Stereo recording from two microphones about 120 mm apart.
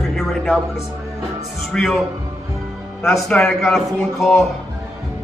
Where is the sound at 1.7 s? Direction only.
Centre (ahead or behind).